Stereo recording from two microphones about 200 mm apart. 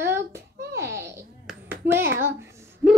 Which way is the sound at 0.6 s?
55° right (ahead or behind).